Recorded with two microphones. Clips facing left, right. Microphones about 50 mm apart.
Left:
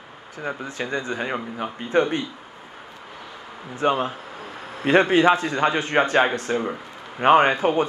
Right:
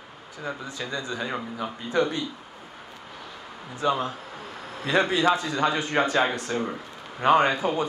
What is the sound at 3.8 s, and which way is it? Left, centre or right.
Speech, left.